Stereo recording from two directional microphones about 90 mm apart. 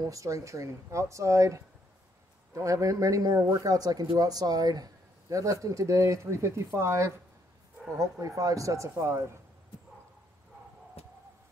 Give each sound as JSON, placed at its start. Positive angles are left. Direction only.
{"t": 0.0, "sound": "speech", "side_deg": -40}